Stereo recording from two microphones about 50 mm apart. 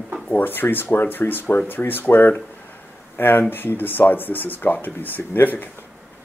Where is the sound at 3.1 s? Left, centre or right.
Left.